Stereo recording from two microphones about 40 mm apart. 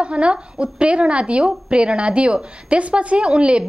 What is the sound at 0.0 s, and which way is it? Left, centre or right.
A woman's voice, right.